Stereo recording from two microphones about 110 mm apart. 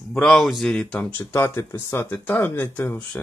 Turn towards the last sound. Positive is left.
turn(degrees=10)  # may be behind; listen again after turning